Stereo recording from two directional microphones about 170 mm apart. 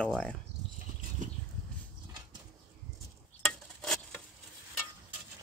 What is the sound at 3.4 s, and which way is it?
Stir, 5° left (ahead or behind).